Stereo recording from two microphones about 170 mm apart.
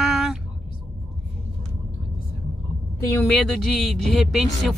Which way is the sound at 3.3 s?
Centre (ahead or behind).